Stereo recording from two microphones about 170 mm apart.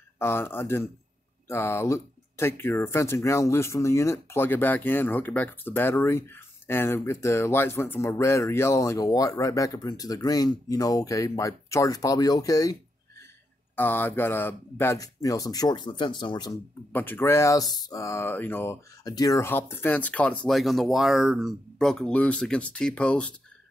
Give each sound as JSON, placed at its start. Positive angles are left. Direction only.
{"t": 0.2, "sound": "speech", "side_deg": 15}
{"t": 13.7, "sound": "speech", "side_deg": 10}
{"t": 16.9, "sound": "speech", "side_deg": 10}